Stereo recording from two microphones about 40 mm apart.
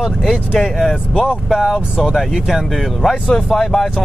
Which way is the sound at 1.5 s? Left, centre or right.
Centre.